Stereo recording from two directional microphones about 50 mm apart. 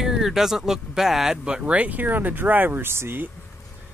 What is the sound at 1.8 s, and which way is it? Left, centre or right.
Speech, right.